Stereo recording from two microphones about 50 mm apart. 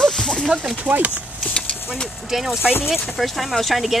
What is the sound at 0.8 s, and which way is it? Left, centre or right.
Speech, right.